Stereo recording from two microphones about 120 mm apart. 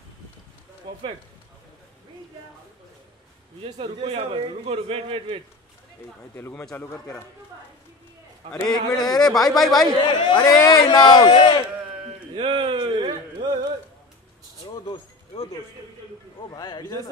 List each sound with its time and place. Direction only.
0.9 s a sound: 40° right (ahead or behind)
3.6 s a man's voice: 55° right (ahead or behind)
6.3 s a man's voice: 15° left (ahead or behind)
8.4 s a man's voice: 45° right (ahead or behind)
8.9 s speech: 35° left (ahead or behind)
9.2 s speech: centre (ahead or behind)
9.8 s speech: 40° left (ahead or behind)
12.4 s speech: 45° right (ahead or behind)
16.3 s speech: 35° left (ahead or behind)